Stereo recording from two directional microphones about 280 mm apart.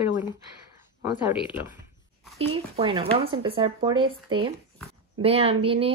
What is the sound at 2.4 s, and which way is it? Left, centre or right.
Speech, centre.